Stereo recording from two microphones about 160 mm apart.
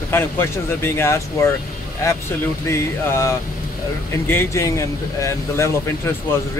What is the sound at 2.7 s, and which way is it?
Speech, 15° left (ahead or behind).